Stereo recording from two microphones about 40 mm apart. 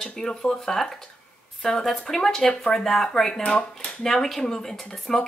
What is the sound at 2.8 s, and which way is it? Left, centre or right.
Speech, centre.